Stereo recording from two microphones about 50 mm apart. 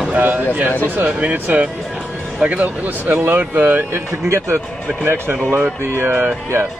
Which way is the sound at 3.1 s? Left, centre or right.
Right.